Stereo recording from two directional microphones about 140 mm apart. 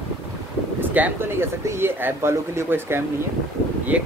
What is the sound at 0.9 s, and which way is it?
Speech, 15° right (ahead or behind).